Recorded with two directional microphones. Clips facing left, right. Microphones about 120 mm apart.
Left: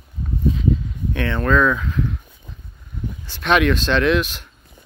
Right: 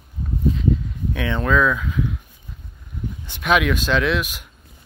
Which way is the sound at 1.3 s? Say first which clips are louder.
Left 1 dB; 10° right (ahead or behind).